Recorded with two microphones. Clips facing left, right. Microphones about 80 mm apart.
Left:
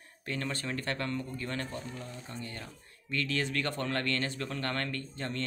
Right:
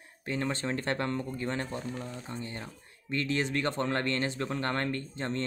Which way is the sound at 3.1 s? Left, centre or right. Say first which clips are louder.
Right 3 dB; right.